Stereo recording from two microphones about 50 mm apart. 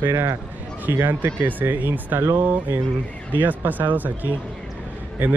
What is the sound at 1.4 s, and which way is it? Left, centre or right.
Speech, right.